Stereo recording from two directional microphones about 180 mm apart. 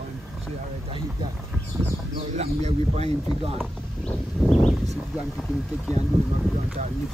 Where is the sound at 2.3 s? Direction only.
35° right (ahead or behind).